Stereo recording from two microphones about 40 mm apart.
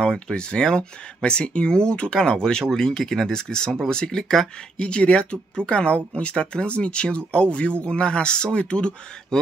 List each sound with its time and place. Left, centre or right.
0.3 s speech: left